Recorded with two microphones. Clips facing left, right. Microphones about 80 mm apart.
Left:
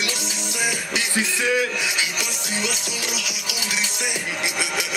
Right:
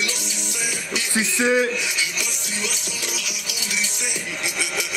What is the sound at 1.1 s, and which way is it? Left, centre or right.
Speech, right.